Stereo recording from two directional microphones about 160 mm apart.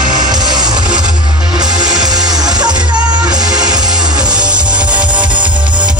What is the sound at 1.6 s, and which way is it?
Music, 25° right (ahead or behind).